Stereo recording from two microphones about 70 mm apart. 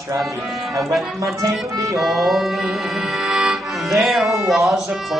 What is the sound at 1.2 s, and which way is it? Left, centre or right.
Accordion, right.